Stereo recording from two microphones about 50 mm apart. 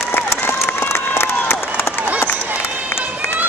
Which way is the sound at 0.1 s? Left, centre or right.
Left.